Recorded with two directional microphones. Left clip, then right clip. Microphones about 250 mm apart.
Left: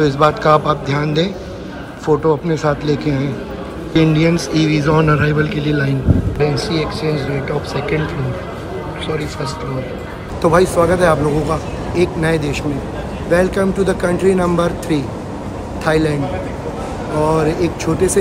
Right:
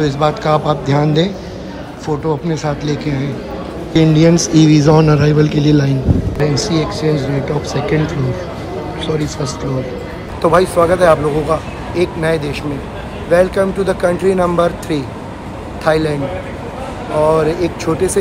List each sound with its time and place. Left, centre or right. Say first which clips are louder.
0.0 s a man's voice: left 2 dB; centre
10.4 s speech: right 1 dB; centre
17.2 s speech: right 3 dB; centre